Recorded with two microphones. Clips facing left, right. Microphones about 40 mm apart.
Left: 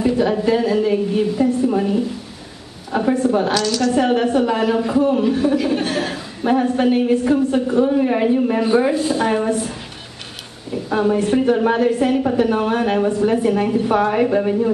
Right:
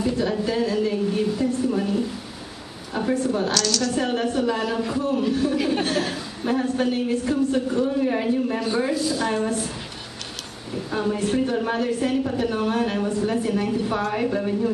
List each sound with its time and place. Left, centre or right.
0.0 s a woman's voice: left
3.1 s a woman's voice: left
3.6 s a woman's voice: centre
10.9 s a woman's voice: centre